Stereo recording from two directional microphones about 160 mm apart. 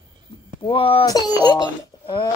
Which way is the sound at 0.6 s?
35° left (ahead or behind).